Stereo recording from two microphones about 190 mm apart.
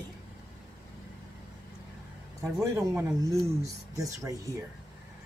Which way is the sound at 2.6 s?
15° right (ahead or behind).